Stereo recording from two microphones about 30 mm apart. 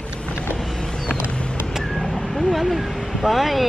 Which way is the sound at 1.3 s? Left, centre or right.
Left.